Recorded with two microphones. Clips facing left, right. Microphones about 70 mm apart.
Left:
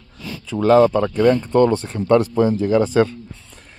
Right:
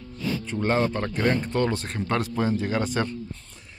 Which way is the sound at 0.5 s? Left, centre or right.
Left.